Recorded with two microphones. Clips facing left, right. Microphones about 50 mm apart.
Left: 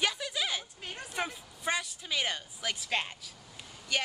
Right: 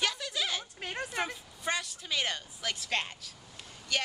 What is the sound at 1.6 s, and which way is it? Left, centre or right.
Speech, centre.